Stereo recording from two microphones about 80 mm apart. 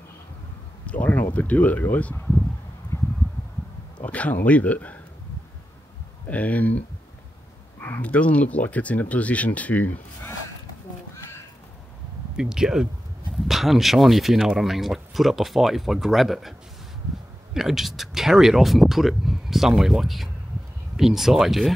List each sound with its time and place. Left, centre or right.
0.8 s speech: left
2.9 s a sound: left
4.0 s speech: centre
6.2 s speech: centre
7.8 s speech: centre
12.4 s speech: centre
17.6 s speech: centre